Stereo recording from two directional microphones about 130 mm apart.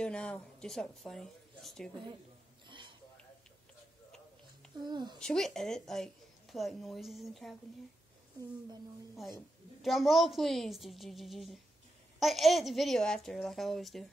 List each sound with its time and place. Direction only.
0.0 s speech: 5° left (ahead or behind)
4.7 s a child's voice: 35° right (ahead or behind)
5.2 s speech: 5° left (ahead or behind)
9.8 s speech: centre (ahead or behind)